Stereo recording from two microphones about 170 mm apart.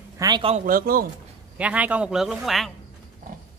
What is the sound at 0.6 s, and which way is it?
Speech, 55° right (ahead or behind).